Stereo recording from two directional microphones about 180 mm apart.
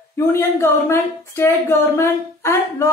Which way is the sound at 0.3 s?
15° left (ahead or behind).